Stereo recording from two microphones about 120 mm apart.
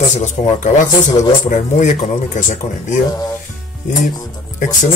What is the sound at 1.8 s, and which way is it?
Speech, 85° left.